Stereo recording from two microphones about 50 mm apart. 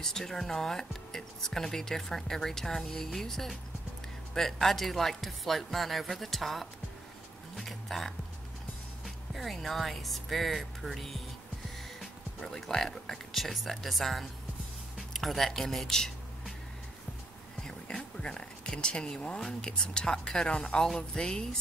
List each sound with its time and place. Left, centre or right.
0.0 s speech: centre
15.0 s music: centre
17.6 s a sound: centre
19.4 s speech: centre